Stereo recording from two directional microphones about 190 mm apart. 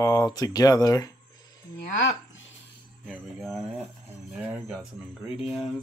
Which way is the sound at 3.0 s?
Centre (ahead or behind).